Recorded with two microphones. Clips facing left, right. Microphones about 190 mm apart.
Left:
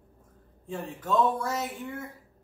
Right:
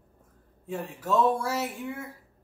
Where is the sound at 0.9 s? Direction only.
10° right (ahead or behind).